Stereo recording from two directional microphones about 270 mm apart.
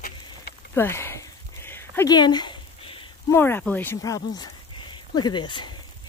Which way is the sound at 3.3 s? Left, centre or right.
Centre.